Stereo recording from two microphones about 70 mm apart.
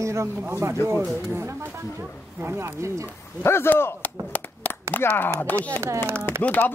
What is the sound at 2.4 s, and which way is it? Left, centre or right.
Speech, right.